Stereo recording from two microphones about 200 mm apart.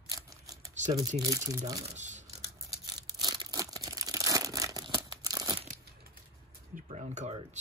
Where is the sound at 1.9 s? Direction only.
35° right (ahead or behind).